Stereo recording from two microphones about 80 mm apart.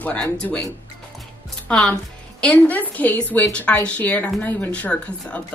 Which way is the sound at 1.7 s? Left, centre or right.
Centre.